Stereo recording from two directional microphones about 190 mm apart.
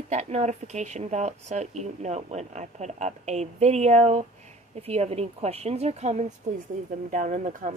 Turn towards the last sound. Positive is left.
turn(degrees=-40)  # may be behind; listen again after turning